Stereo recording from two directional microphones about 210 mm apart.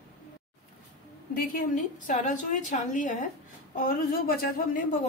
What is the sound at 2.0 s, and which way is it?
A woman's voice, 35° left (ahead or behind).